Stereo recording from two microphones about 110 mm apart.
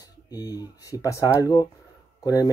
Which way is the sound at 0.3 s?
35° left (ahead or behind).